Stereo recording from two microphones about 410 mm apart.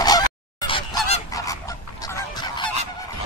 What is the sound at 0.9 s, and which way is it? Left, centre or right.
Goose, right.